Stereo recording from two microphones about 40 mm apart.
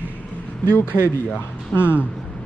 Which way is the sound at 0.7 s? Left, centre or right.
Left.